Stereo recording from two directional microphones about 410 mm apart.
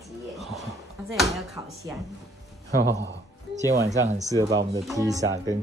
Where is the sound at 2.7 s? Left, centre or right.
Right.